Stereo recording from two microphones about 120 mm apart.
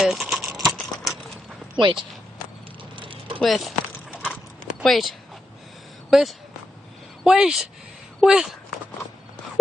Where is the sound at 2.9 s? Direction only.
45° right (ahead or behind).